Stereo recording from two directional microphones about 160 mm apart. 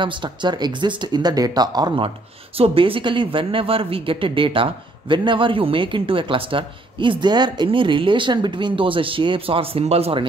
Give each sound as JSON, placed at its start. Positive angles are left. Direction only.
{"t": 0.0, "sound": "speech", "side_deg": -30}